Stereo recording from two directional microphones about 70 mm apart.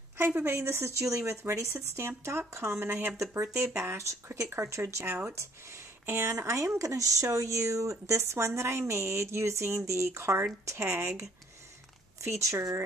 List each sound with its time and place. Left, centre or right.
0.4 s speech: right